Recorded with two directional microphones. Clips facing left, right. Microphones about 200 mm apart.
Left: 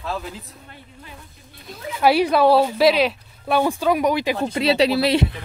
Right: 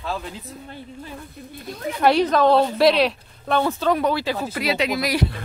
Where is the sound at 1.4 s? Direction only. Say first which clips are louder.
Right 11 dB; 60° right (ahead or behind).